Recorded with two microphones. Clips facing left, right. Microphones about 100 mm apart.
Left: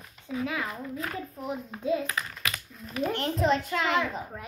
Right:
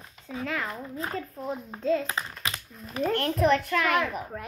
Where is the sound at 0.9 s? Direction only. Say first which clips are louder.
Right 3 dB; 25° right (ahead or behind).